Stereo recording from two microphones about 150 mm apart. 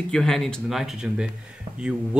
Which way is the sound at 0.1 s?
Centre (ahead or behind).